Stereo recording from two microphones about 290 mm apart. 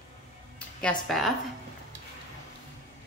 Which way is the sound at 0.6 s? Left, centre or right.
Centre.